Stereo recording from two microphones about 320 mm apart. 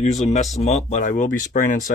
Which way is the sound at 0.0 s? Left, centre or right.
Left.